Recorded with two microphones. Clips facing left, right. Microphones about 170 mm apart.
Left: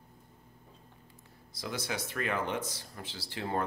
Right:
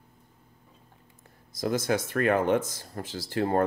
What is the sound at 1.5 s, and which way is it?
Speech, 45° right (ahead or behind).